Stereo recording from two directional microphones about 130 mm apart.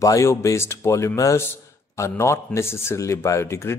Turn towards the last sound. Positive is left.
turn(degrees=20)  # may be behind; listen again after turning